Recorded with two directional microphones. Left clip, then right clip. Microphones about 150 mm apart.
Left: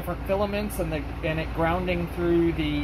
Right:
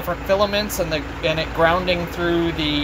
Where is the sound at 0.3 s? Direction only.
10° right (ahead or behind).